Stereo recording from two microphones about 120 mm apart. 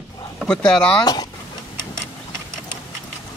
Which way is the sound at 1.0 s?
35° left (ahead or behind).